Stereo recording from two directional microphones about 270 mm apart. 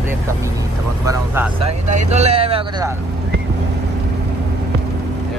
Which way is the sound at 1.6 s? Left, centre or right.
Right.